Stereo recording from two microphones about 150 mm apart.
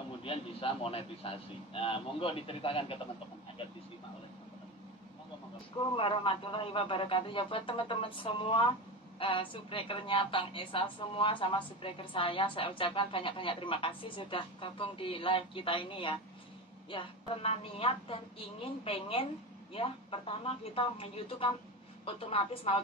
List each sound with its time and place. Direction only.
0.2 s a woman's voice: 35° left (ahead or behind)
5.9 s a woman's voice: 35° left (ahead or behind)